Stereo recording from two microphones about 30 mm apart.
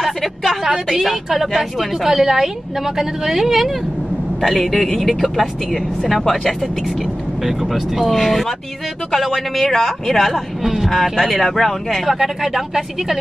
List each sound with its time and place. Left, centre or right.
0.9 s speech: centre
2.0 s a woman's voice: centre
4.4 s speech: centre
7.4 s speech: centre
10.6 s speech: centre
10.9 s speech: centre
12.1 s a woman's voice: centre